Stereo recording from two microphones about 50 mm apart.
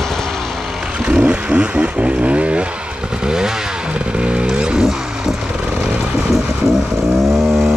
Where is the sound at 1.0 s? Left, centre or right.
Right.